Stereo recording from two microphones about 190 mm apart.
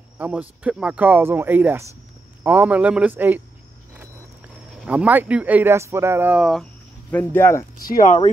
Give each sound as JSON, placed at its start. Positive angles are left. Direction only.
{"t": 0.2, "sound": "speech", "side_deg": -5}
{"t": 4.8, "sound": "speech", "side_deg": -5}
{"t": 7.8, "sound": "speech", "side_deg": 45}